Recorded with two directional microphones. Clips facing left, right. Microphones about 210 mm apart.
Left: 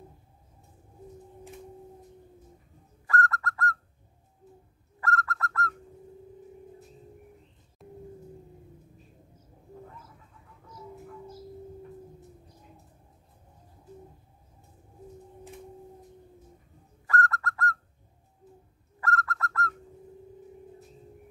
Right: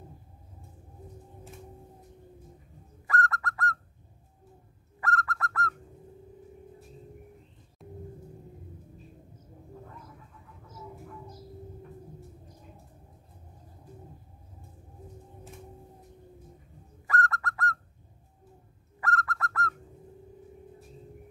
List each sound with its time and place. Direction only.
3.1 s bird: 20° right (ahead or behind)
5.0 s bird: 15° right (ahead or behind)
7.8 s a sound: centre (ahead or behind)
17.1 s bird: 20° right (ahead or behind)
18.9 s bird: 15° right (ahead or behind)